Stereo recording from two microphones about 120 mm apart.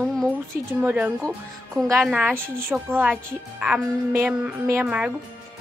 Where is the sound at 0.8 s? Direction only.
10° right (ahead or behind).